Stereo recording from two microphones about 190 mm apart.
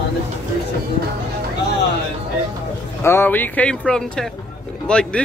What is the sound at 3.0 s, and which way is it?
Speech, 10° left (ahead or behind).